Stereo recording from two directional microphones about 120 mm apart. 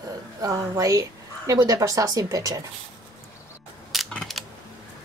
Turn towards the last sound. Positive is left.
turn(degrees=0)  # may be behind; listen again after turning